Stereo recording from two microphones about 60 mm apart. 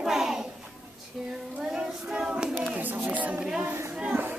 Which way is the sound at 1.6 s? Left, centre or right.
Centre.